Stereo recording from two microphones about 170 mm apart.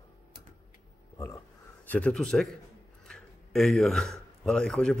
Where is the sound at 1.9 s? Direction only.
5° left (ahead or behind).